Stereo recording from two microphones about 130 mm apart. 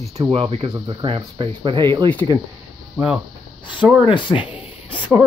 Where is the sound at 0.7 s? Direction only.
30° right (ahead or behind).